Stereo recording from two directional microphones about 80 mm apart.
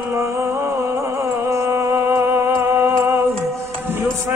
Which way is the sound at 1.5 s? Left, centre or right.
Right.